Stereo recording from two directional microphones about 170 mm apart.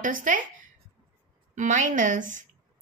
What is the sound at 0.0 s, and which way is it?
A woman's voice, 50° right (ahead or behind).